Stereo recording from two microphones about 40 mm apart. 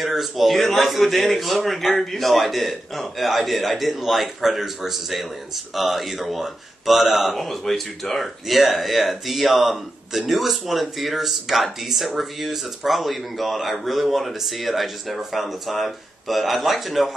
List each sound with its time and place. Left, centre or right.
0.0 s speech: centre